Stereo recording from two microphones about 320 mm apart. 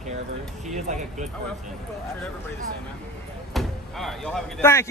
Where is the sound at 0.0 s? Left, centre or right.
Right.